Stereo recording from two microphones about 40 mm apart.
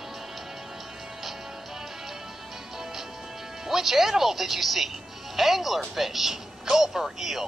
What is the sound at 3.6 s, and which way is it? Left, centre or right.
Speech, centre.